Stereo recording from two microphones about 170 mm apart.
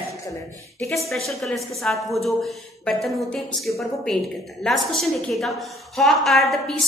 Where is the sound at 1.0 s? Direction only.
Centre (ahead or behind).